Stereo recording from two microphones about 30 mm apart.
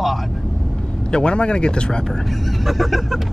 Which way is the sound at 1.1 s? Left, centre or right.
Left.